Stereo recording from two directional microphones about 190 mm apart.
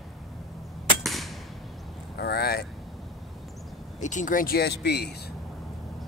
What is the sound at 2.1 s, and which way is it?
Vehicle, 60° left (ahead or behind).